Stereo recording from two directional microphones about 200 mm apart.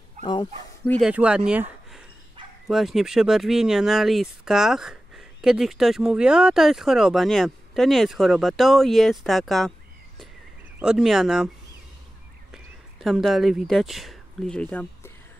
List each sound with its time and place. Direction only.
0.2 s speech: 20° left (ahead or behind)
0.8 s speech: 5° left (ahead or behind)
1.5 s a sound: 5° right (ahead or behind)
2.7 s speech: centre (ahead or behind)